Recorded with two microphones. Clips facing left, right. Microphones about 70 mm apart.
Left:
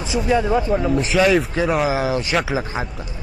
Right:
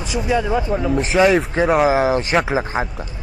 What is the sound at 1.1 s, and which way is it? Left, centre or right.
Speech, right.